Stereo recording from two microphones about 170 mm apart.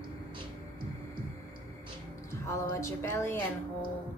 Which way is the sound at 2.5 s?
15° left (ahead or behind).